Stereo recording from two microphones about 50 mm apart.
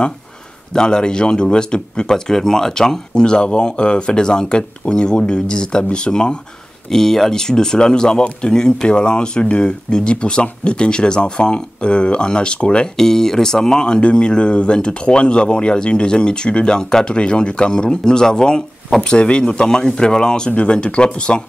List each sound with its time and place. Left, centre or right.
0.7 s speech: centre
6.9 s speech: centre